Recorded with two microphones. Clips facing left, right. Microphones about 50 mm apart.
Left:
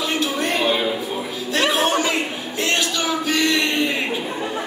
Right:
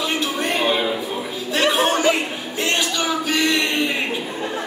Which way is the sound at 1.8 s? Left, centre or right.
Centre.